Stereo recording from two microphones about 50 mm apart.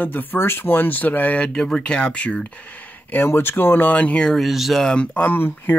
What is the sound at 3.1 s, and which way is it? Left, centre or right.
Speech, left.